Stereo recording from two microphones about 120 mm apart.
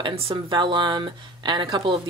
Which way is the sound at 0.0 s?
50° right (ahead or behind).